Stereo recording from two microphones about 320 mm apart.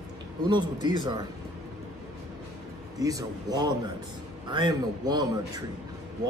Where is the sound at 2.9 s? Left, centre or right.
Centre.